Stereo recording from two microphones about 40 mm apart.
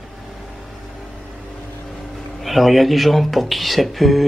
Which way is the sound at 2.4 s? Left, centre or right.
Centre.